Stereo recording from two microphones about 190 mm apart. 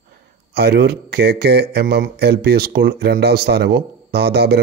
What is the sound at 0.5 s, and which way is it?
Speech, 55° right (ahead or behind).